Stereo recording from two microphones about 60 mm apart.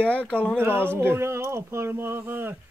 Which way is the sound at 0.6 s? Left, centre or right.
Right.